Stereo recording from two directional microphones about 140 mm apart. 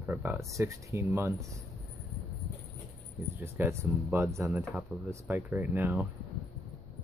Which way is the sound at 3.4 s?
15° right (ahead or behind).